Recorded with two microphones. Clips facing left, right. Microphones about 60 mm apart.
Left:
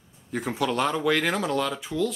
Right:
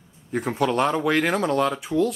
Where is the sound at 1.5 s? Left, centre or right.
Right.